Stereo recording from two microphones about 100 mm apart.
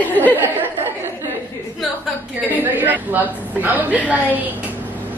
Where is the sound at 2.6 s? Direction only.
20° right (ahead or behind).